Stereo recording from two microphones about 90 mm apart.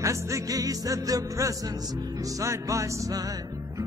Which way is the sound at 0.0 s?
35° right (ahead or behind).